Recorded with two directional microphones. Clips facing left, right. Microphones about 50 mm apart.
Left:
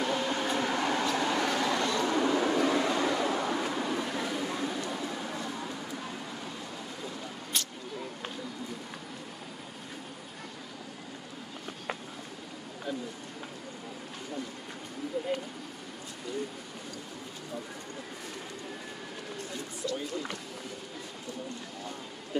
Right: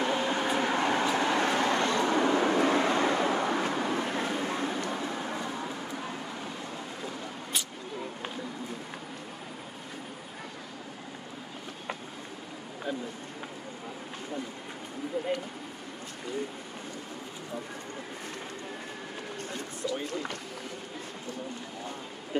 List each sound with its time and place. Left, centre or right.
0.0 s vehicle: right
7.5 s vehicle: centre